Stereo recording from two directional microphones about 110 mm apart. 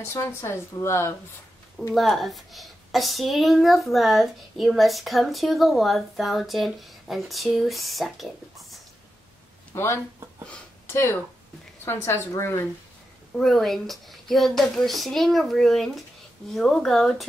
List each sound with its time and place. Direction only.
0.0 s a woman's voice: 25° left (ahead or behind)
2.0 s a woman's voice: centre (ahead or behind)
9.8 s a woman's voice: 25° left (ahead or behind)
13.4 s a woman's voice: centre (ahead or behind)